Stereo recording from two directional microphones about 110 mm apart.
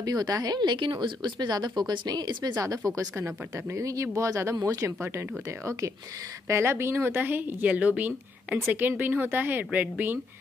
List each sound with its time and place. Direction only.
0.0 s a woman's voice: 35° right (ahead or behind)
6.4 s speech: 25° right (ahead or behind)